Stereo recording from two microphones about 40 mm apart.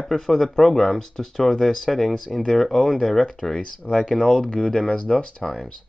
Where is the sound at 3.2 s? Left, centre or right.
Centre.